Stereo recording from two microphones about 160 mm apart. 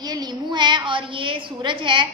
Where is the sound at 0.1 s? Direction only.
30° right (ahead or behind).